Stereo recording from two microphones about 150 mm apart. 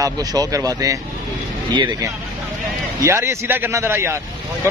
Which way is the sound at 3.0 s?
20° right (ahead or behind).